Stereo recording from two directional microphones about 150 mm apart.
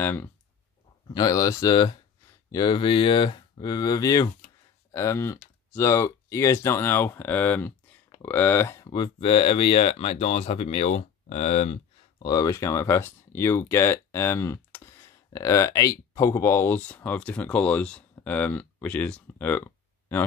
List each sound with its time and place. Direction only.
0.0 s speech: 15° left (ahead or behind)
1.0 s speech: 25° left (ahead or behind); by 11.8 s 50° left (ahead or behind)
12.2 s speech: 25° left (ahead or behind)